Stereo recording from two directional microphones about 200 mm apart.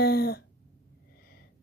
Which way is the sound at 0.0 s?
50° left (ahead or behind).